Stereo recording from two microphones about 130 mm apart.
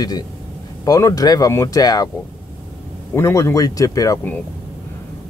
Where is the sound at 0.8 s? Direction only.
25° left (ahead or behind).